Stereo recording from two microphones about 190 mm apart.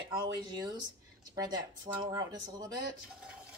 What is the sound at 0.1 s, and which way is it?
Speech, 20° right (ahead or behind).